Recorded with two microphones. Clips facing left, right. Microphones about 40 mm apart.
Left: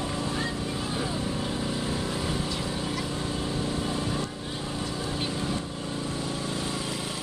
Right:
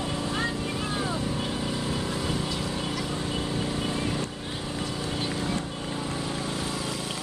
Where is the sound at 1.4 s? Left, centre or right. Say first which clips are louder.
Even; centre.